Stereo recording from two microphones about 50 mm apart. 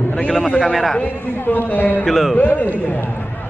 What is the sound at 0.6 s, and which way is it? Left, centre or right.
Speech, centre.